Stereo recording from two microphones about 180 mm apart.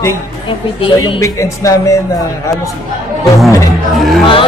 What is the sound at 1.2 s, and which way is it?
Speech, 15° left (ahead or behind).